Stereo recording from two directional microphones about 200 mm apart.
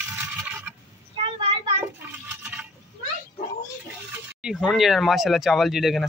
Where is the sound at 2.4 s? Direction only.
5° right (ahead or behind).